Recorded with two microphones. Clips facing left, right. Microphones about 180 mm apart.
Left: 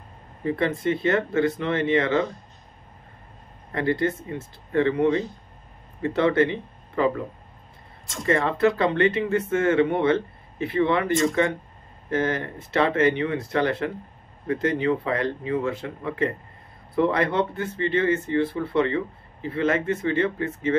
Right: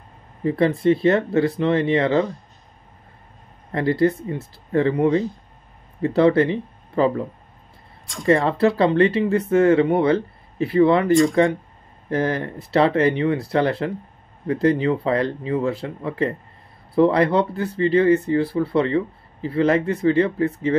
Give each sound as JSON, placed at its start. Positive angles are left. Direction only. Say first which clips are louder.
{"t": 0.5, "sound": "speech", "louder": "right 6 dB", "side_deg": -35}
{"t": 3.7, "sound": "speech", "louder": "right 5 dB", "side_deg": -35}
{"t": 8.3, "sound": "speech", "louder": "right 4 dB", "side_deg": -35}